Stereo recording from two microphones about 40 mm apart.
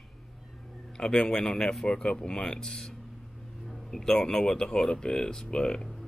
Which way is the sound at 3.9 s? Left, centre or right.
Centre.